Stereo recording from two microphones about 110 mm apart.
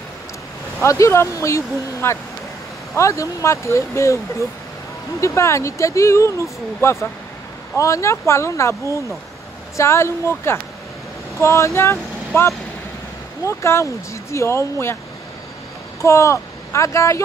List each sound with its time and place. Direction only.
0.8 s speech: 25° left (ahead or behind)
5.2 s speech: 25° left (ahead or behind)
16.0 s speech: 25° left (ahead or behind)